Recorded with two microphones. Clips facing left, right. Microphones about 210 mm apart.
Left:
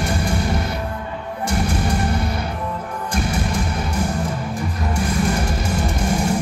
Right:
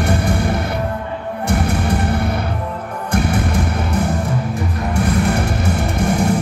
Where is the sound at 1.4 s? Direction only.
60° right (ahead or behind).